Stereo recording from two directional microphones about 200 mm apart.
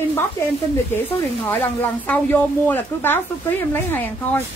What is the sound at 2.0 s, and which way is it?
Speech, 10° left (ahead or behind).